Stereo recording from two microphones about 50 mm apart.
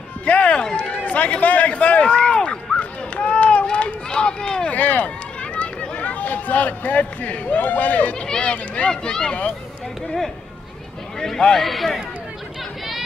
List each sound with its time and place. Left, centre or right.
0.2 s run: left
1.0 s a sound: left
3.7 s run: left
4.6 s speech: left
8.3 s speech: left
11.1 s a man's voice: centre